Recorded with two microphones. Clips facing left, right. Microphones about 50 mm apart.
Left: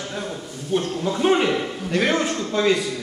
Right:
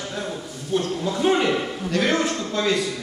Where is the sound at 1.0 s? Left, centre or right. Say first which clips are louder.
Left 2 dB; centre.